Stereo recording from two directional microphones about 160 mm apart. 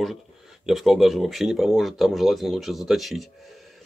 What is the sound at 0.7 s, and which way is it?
Speech, centre (ahead or behind).